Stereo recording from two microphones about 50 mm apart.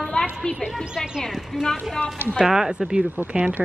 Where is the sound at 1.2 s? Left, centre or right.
Centre.